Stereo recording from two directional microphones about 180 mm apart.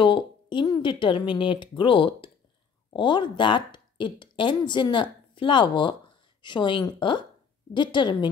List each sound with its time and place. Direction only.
0.0 s speech: 25° left (ahead or behind)